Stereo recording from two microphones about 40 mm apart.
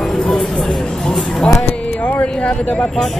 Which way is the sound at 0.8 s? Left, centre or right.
Centre.